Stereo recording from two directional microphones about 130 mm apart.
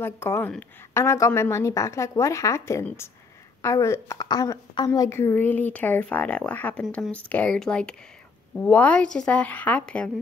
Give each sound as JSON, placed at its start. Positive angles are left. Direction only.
{"t": 0.0, "sound": "a woman's voice", "side_deg": 20}